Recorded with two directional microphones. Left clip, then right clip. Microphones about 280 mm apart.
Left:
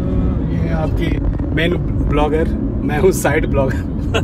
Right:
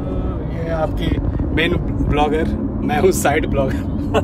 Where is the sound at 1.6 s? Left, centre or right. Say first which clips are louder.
Even; centre.